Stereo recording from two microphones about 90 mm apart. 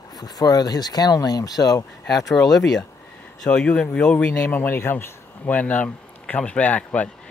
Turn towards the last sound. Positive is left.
turn(degrees=15)  # may be behind; listen again after turning